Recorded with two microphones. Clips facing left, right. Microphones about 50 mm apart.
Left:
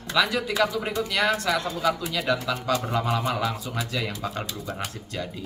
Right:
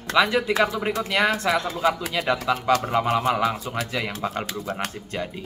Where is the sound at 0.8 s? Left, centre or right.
Centre.